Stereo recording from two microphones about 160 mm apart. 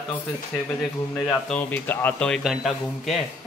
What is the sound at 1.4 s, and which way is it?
A man's voice, 10° left (ahead or behind).